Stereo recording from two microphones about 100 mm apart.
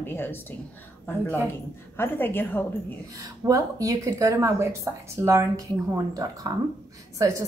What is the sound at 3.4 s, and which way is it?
Speech, 35° right (ahead or behind).